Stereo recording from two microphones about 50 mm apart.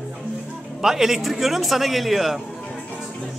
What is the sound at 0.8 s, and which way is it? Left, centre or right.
Speech, centre.